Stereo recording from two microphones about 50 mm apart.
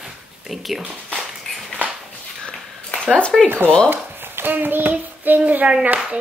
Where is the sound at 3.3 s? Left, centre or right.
Centre.